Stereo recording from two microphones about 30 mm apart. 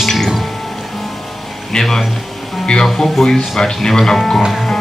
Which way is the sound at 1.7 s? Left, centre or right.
Left.